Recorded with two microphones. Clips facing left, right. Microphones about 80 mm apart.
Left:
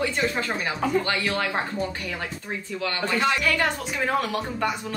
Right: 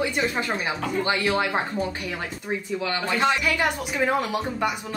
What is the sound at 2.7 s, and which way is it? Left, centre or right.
Speech, centre.